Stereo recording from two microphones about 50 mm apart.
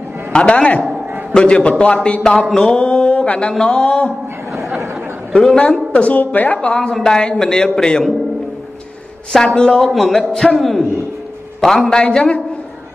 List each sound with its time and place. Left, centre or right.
0.3 s a sound: left
5.3 s a man's voice: centre
5.6 s a sound: left
6.7 s speech: centre
9.5 s speech: centre
9.9 s a man's voice: centre